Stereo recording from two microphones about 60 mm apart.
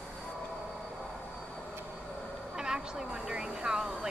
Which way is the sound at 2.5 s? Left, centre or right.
Centre.